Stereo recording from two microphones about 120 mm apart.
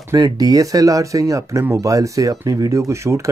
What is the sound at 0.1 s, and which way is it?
Speech, 30° right (ahead or behind).